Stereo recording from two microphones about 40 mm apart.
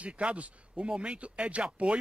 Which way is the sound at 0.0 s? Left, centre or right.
Right.